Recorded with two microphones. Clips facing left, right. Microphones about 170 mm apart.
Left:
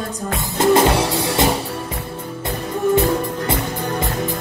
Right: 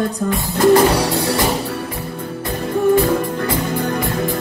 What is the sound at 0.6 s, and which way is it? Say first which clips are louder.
Music: right 2 dB; 25° left (ahead or behind).